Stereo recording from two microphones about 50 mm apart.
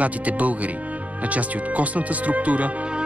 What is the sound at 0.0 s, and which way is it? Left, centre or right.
Speech, right.